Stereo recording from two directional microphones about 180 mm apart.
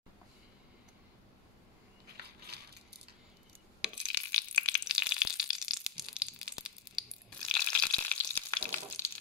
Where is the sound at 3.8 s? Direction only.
5° right (ahead or behind).